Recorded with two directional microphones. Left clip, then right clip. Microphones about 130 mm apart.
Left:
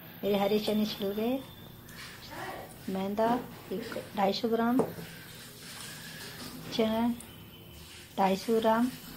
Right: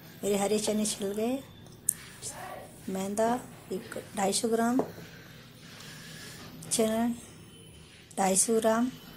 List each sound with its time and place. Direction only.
0.2 s speech: 65° right (ahead or behind)
2.9 s speech: 55° right (ahead or behind)
6.7 s speech: 60° right (ahead or behind)
8.2 s speech: 55° right (ahead or behind)